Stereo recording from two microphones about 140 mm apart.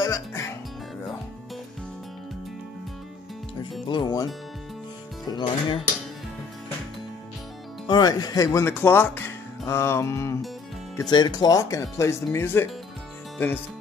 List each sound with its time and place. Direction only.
0.0 s speech: 20° left (ahead or behind)
3.8 s speech: 35° left (ahead or behind)
5.3 s speech: 35° left (ahead or behind)
7.8 s speech: 30° left (ahead or behind)
11.0 s speech: 30° left (ahead or behind); by 13.5 s 15° left (ahead or behind)